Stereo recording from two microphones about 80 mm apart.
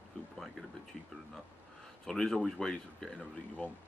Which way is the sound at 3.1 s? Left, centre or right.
Left.